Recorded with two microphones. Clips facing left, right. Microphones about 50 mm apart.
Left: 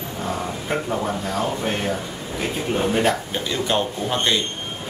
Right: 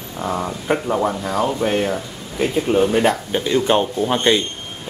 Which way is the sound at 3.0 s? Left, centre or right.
Centre.